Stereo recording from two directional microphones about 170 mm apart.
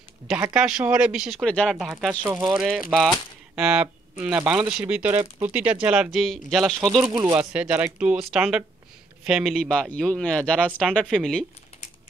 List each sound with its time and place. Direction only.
0.3 s speech: 10° right (ahead or behind)
7.1 s speech: 20° right (ahead or behind)
7.3 s speech: 10° right (ahead or behind)